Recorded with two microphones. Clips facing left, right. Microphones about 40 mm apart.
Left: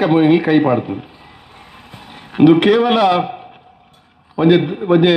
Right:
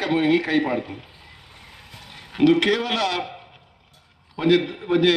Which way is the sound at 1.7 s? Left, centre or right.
Left.